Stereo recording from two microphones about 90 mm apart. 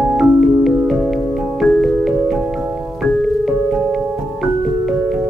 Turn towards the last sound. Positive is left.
turn(degrees=0)  # may be behind; listen again after turning